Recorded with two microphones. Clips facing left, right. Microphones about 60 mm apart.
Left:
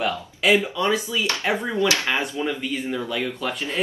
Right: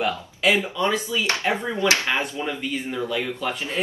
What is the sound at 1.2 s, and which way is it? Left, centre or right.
Speech, right.